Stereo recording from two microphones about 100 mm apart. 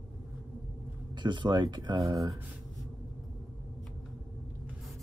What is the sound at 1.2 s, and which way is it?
Speech, 50° right (ahead or behind).